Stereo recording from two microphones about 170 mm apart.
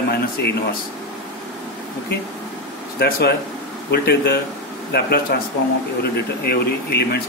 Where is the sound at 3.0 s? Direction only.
65° left (ahead or behind).